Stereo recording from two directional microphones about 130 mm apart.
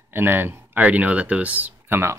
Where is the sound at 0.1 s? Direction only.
15° right (ahead or behind).